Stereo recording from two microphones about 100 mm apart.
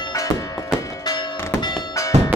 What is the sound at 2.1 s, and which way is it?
Music, 90° right.